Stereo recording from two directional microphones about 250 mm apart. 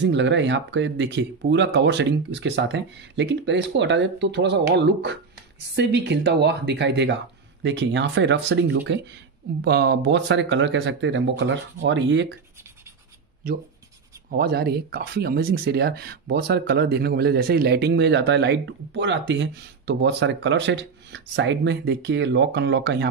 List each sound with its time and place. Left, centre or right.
0.0 s speech: right
14.3 s speech: right